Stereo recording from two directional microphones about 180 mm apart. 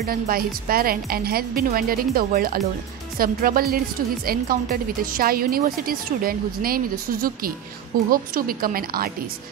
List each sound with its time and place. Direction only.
0.0 s speech: 55° right (ahead or behind)